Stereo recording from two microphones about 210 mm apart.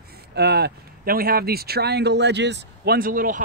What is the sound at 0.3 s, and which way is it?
Speech, 50° right (ahead or behind).